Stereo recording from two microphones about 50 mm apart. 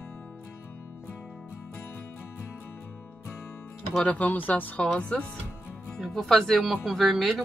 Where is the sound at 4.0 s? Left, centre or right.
Left.